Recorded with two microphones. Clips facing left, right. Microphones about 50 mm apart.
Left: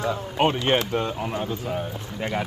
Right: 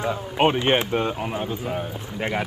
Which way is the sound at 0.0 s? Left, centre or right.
Centre.